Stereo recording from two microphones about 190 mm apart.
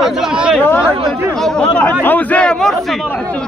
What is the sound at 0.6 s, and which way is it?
Speech, 10° left (ahead or behind).